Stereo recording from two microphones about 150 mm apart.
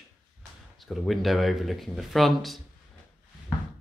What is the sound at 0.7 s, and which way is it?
Speech, centre (ahead or behind).